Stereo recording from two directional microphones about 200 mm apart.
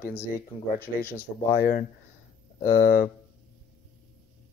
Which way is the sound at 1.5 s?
45° left (ahead or behind).